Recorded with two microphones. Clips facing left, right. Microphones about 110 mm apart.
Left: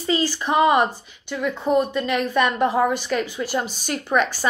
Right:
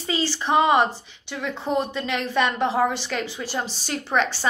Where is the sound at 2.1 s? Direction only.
30° right (ahead or behind).